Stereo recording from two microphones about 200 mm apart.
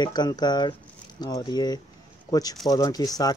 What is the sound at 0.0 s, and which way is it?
A man's voice, 20° left (ahead or behind).